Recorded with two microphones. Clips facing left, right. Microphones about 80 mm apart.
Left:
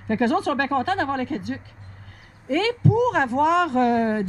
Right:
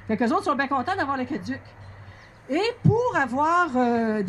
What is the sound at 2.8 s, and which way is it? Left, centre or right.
A man's voice, centre.